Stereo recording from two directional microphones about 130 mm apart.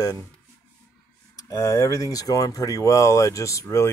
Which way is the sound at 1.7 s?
25° left (ahead or behind).